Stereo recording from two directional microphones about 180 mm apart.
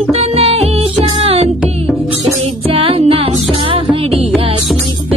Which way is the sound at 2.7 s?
30° right (ahead or behind).